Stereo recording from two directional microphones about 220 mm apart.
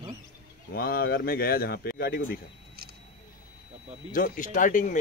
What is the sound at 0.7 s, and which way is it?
Speech, 45° left (ahead or behind).